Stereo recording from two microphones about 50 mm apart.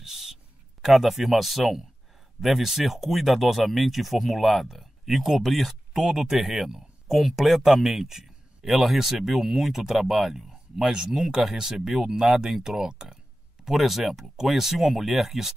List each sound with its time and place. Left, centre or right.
0.0 s a sound: centre
0.8 s speech: centre
13.7 s speech: centre